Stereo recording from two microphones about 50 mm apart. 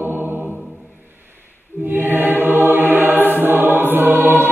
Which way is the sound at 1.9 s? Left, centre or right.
Right.